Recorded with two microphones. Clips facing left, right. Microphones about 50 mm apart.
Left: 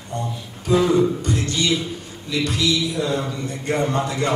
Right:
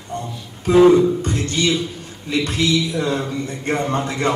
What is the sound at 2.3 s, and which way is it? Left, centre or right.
A man's voice, right.